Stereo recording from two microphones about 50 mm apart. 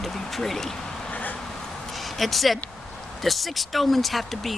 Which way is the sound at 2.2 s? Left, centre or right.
Centre.